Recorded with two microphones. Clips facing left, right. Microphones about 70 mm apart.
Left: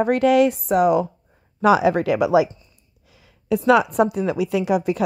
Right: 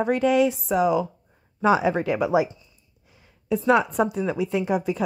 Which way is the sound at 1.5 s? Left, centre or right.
Left.